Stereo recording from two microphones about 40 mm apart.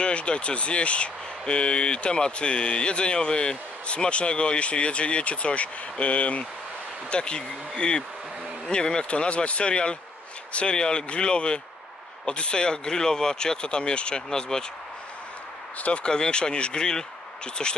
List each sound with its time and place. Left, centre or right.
0.0 s speech: left
15.8 s speech: left